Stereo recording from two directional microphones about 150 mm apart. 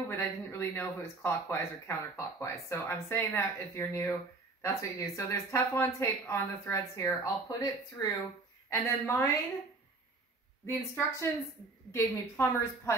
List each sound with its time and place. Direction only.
0.1 s speech: 15° left (ahead or behind)
10.7 s speech: 20° left (ahead or behind)